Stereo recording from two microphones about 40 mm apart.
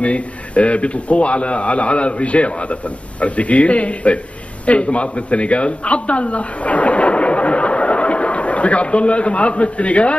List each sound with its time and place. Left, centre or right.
0.0 s a man's voice: left